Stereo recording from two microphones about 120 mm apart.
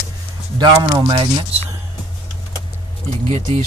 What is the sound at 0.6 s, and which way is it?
Speech, 35° right (ahead or behind).